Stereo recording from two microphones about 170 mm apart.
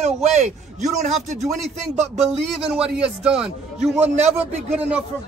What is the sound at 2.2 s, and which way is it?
Speech, 5° right (ahead or behind).